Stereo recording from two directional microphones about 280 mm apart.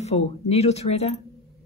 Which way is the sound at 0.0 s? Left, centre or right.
Left.